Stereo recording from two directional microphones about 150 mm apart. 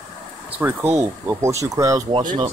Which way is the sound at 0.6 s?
15° right (ahead or behind).